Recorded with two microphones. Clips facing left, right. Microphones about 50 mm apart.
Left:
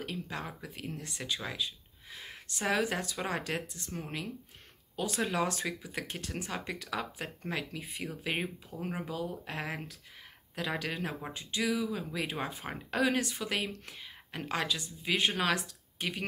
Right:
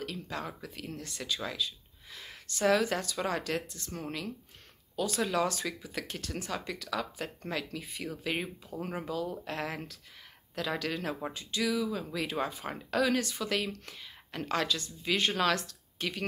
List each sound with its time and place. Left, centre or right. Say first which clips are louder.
0.0 s a woman's voice: right 1 dB; left